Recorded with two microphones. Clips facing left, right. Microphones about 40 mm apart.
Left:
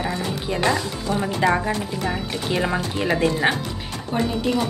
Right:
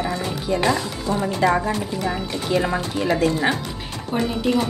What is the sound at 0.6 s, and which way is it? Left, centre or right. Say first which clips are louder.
Speech: left 1 dB; centre.